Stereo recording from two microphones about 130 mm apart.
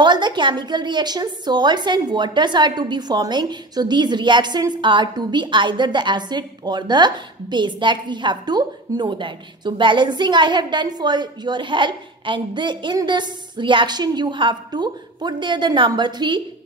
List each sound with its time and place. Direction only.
0.0 s a woman's voice: 35° right (ahead or behind)